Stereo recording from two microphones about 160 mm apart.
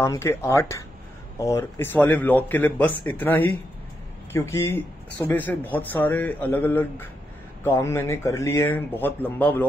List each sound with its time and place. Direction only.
0.0 s speech: 15° left (ahead or behind)